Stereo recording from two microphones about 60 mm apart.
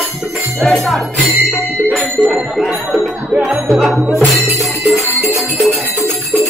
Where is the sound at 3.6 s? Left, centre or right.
Centre.